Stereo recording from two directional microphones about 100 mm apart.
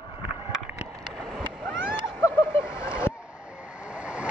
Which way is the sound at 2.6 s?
10° right (ahead or behind).